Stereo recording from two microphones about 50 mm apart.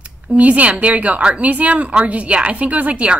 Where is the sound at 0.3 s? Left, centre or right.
Right.